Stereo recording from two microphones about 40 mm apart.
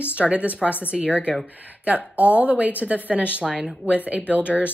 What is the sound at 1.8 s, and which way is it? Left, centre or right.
Speech, right.